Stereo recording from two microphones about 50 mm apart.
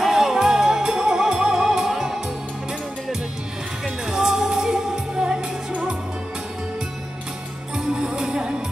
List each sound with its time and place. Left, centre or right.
0.0 s music: centre
3.8 s music: centre
7.7 s music: centre